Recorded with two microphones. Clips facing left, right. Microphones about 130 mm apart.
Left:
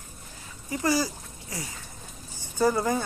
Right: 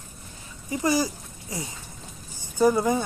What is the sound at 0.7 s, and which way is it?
Speech, 20° right (ahead or behind).